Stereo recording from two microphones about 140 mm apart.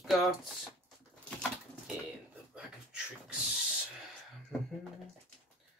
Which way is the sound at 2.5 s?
5° right (ahead or behind).